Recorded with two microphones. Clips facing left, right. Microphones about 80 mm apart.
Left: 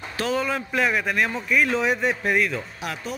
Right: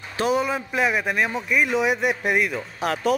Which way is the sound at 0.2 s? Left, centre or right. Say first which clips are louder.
Right 3 dB; centre.